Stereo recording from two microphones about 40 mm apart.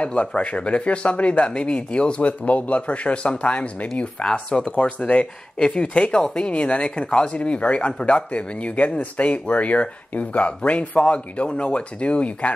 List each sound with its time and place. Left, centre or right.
0.0 s speech: left